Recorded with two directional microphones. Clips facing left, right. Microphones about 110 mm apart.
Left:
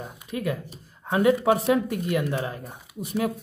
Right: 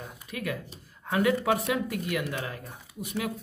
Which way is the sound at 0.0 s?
25° left (ahead or behind).